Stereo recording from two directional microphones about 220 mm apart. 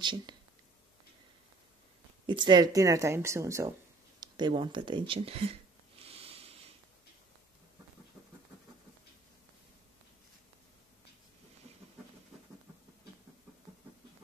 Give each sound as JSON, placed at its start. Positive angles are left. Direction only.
{"t": 0.0, "sound": "speech", "side_deg": -20}
{"t": 2.2, "sound": "speech", "side_deg": -20}
{"t": 4.2, "sound": "a sound", "side_deg": -20}